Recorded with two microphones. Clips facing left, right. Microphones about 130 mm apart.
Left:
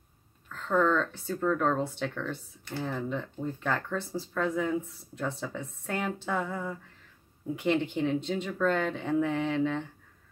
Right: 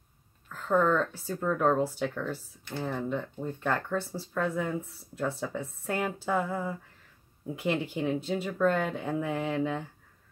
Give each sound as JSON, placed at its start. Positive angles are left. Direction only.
{"t": 0.5, "sound": "speech", "side_deg": -5}